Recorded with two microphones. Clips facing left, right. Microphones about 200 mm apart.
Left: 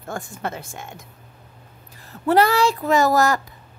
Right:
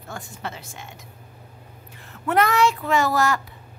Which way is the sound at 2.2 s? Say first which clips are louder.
Left 3 dB; 35° left (ahead or behind).